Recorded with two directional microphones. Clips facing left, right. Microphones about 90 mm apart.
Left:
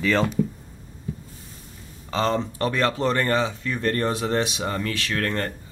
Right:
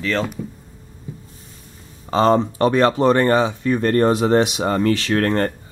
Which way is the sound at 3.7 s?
40° right (ahead or behind).